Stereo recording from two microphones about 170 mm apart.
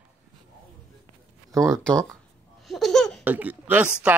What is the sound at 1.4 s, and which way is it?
Speech, 20° right (ahead or behind).